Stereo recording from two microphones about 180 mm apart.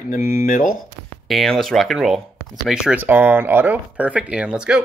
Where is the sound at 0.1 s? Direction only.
50° left (ahead or behind).